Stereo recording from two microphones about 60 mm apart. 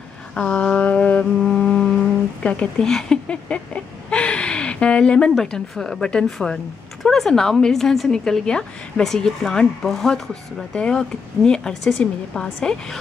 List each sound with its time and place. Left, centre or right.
0.3 s a sound: centre
1.4 s music: centre
2.4 s a woman's voice: left
2.8 s a woman's voice: centre